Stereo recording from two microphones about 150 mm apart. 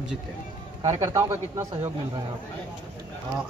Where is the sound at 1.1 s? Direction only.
15° right (ahead or behind).